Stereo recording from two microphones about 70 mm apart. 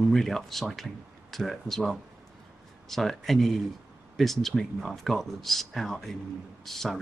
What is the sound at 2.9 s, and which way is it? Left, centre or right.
Speech, centre.